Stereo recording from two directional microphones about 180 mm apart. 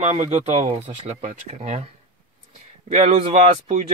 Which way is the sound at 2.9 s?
40° right (ahead or behind).